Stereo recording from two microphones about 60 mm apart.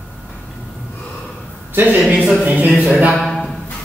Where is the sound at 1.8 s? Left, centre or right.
Right.